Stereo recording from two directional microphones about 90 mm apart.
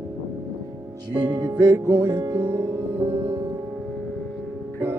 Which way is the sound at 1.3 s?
55° right (ahead or behind).